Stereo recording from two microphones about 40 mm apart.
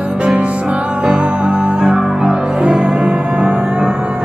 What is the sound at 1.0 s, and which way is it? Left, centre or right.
Music, right.